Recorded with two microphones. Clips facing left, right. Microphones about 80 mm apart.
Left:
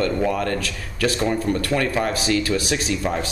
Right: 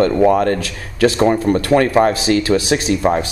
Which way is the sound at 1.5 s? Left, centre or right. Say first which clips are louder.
Right 7 dB; right.